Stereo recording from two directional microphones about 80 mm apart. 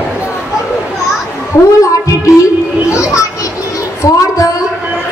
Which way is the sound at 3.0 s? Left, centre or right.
Left.